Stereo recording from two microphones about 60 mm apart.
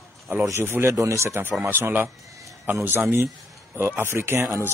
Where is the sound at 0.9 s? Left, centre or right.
Right.